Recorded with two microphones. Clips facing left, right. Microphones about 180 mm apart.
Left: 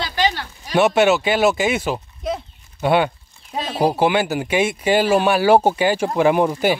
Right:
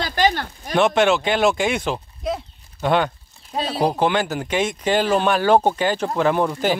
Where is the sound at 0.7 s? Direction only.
5° left (ahead or behind).